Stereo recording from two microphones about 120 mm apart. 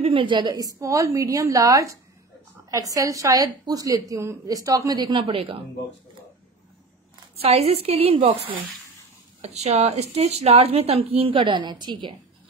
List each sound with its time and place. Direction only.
0.0 s a woman's voice: 45° right (ahead or behind)
7.4 s a woman's voice: 60° right (ahead or behind)
9.4 s a woman's voice: 65° right (ahead or behind); by 12.1 s 40° right (ahead or behind)